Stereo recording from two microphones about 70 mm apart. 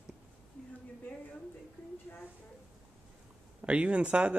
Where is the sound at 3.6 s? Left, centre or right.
Centre.